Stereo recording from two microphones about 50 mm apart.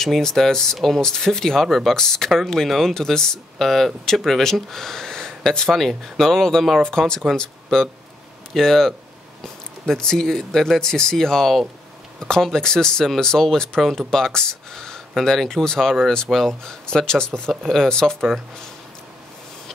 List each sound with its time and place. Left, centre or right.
0.0 s speech: centre